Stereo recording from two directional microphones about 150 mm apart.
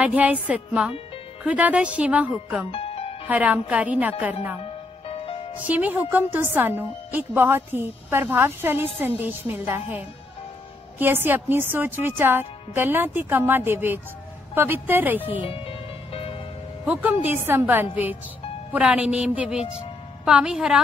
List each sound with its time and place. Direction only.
0.0 s a woman's voice: 10° right (ahead or behind)
2.7 s music: 40° left (ahead or behind)
3.3 s a woman's voice: 10° right (ahead or behind)
4.6 s music: 40° left (ahead or behind)
5.7 s a woman's voice: 10° right (ahead or behind)
15.4 s music: 40° left (ahead or behind)
16.8 s a woman's voice: 10° right (ahead or behind)